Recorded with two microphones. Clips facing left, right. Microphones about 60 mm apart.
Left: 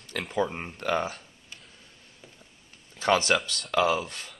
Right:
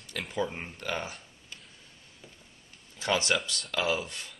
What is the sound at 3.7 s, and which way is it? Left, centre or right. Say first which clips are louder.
Speech: left 6 dB; left.